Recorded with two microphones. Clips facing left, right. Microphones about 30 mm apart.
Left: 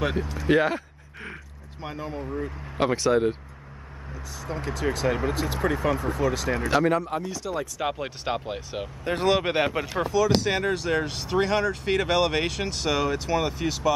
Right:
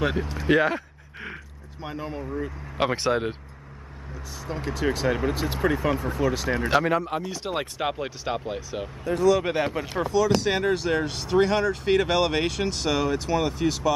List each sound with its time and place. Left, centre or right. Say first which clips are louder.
0.0 s speech: right 1 dB; centre
4.1 s speech: even; centre
8.2 s speech: even; centre
9.0 s speech: right 2 dB; left
9.5 s speech: left 1 dB; left
10.1 s speech: right 1 dB; centre